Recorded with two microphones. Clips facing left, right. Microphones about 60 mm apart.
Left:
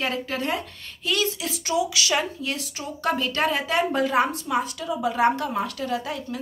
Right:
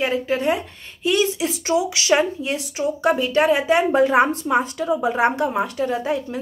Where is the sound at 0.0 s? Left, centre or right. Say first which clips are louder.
Right 6 dB; centre.